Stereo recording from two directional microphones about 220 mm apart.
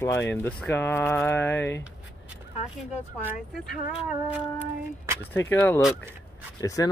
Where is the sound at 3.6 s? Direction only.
5° right (ahead or behind).